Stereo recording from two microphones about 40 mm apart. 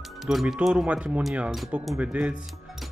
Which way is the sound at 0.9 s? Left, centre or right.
Right.